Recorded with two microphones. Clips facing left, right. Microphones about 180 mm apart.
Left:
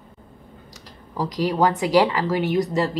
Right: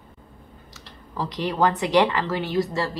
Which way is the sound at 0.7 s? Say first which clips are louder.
Left 3 dB; 10° left (ahead or behind).